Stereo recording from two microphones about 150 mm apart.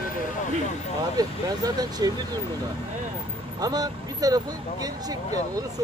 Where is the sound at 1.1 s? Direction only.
25° right (ahead or behind).